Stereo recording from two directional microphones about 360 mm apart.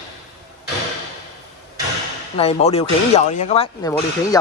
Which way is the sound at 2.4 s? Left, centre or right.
Centre.